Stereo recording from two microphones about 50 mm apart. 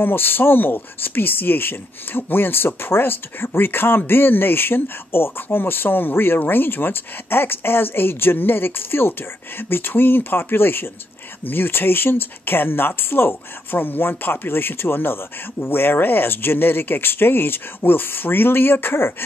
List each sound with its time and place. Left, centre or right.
0.0 s speech: left